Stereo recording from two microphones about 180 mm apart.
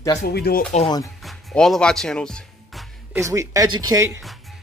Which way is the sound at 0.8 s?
20° left (ahead or behind).